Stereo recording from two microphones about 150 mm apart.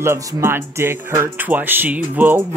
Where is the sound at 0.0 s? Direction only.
15° right (ahead or behind).